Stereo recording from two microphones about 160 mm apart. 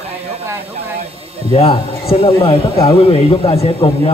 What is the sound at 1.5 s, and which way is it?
A man's voice, 35° left (ahead or behind).